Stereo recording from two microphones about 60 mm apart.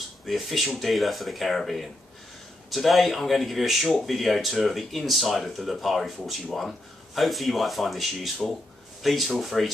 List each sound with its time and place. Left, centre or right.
0.3 s speech: centre